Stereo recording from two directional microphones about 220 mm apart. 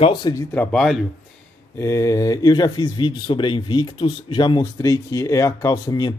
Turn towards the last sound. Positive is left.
turn(degrees=15)  # may be behind; listen again after turning